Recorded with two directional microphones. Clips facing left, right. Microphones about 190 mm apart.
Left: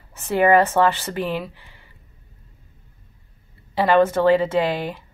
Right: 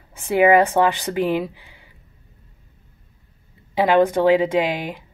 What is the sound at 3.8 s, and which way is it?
A woman's voice, 15° right (ahead or behind).